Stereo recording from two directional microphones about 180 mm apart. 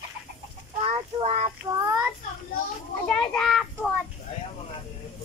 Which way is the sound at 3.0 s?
5° left (ahead or behind).